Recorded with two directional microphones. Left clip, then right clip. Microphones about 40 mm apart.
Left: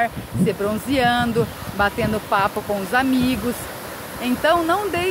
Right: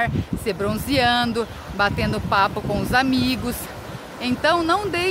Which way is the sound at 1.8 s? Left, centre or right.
Right.